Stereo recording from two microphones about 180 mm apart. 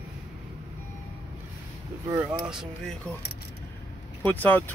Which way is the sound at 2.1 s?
10° right (ahead or behind).